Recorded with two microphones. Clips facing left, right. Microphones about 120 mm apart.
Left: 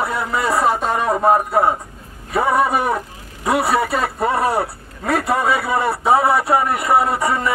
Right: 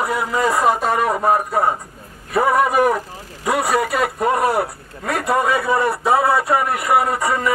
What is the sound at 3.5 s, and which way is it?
A man's voice, 30° left (ahead or behind).